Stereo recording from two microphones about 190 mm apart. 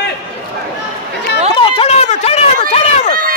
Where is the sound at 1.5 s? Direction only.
30° left (ahead or behind).